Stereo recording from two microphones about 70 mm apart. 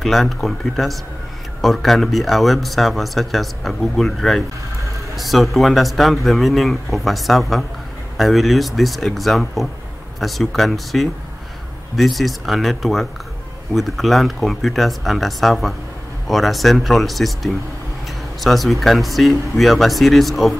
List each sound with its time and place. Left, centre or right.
0.0 s speech: centre